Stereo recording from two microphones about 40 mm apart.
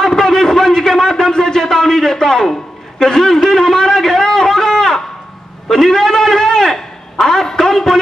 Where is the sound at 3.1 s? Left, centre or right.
Centre.